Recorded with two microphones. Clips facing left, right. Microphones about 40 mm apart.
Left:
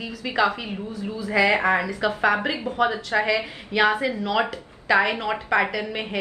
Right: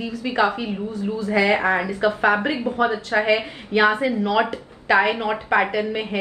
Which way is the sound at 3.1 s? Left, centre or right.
Right.